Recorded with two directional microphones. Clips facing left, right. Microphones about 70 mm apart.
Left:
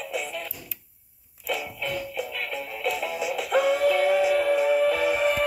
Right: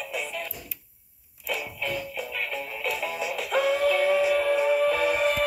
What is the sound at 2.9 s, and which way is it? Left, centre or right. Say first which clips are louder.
Synthetic singing: left 2 dB; centre.